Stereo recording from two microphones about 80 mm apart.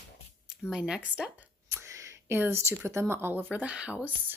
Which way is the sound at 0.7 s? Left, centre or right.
Centre.